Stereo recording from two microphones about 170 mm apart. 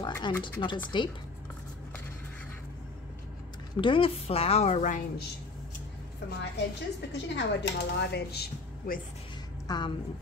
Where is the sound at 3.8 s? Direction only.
30° left (ahead or behind).